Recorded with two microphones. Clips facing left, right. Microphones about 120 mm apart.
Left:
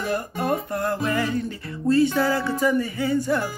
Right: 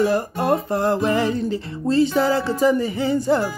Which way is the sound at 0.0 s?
30° right (ahead or behind).